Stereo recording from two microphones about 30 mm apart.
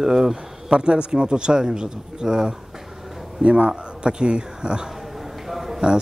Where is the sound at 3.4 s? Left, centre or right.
Right.